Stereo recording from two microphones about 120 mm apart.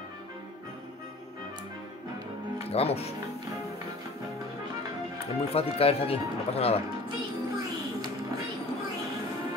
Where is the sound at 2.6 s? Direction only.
60° left (ahead or behind).